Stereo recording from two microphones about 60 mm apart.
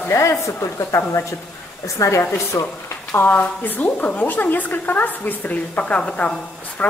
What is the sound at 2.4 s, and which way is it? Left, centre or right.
A woman's voice, left.